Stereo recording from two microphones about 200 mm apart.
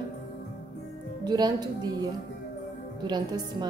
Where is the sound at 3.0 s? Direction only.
20° right (ahead or behind).